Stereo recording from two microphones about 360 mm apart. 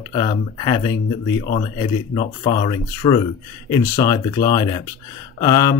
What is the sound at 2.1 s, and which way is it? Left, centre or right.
Speech, centre.